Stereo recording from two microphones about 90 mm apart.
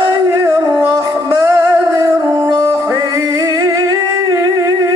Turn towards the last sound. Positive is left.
turn(degrees=-40)  # may be behind; listen again after turning